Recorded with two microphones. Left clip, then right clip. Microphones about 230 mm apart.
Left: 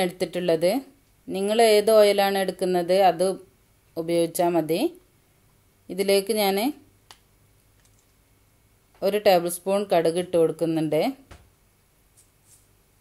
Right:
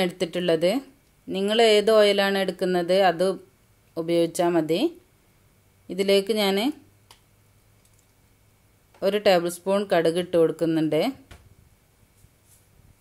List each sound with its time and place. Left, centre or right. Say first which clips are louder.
0.0 s speech: even; centre
9.0 s speech: left 1 dB; centre